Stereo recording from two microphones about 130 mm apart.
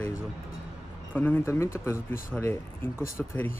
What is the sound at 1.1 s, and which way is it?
Speech, 15° left (ahead or behind).